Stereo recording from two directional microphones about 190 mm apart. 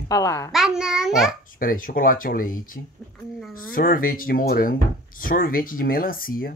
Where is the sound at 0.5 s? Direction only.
5° right (ahead or behind).